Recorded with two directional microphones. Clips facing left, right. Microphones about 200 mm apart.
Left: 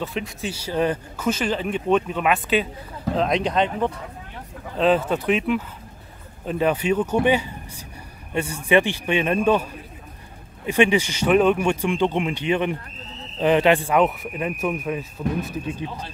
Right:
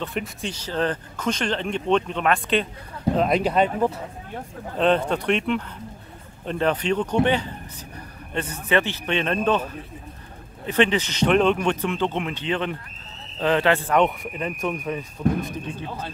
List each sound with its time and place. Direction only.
0.0 s speech: centre (ahead or behind)
3.2 s speech: 5° right (ahead or behind)
4.7 s speech: 5° left (ahead or behind)
13.9 s speech: 5° left (ahead or behind)